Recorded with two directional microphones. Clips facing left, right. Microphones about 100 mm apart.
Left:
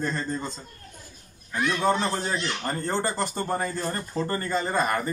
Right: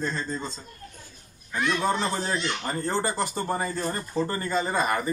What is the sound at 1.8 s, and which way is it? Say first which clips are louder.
Speech: left 2 dB; 5° right (ahead or behind).